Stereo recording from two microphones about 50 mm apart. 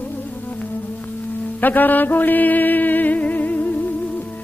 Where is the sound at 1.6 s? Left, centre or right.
Left.